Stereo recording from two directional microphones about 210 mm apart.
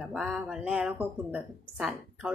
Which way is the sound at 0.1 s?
Centre (ahead or behind).